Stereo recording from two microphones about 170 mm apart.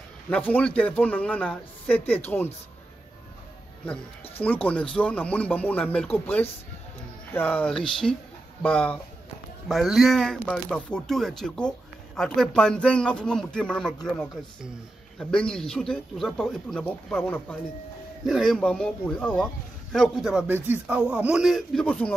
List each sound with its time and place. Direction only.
0.3 s speech: 10° left (ahead or behind)
3.8 s a man's voice: 10° left (ahead or behind)
15.1 s a man's voice: 5° left (ahead or behind)
18.2 s a man's voice: centre (ahead or behind)